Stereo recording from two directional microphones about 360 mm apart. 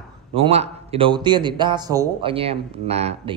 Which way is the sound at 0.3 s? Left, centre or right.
Centre.